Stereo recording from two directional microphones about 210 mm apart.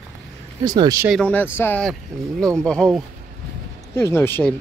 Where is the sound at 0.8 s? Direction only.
15° right (ahead or behind).